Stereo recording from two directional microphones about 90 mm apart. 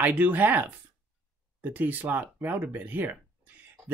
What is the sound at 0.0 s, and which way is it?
Speech, 20° right (ahead or behind).